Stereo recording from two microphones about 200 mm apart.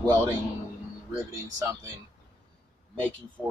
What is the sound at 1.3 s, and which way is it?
Speech, 15° right (ahead or behind).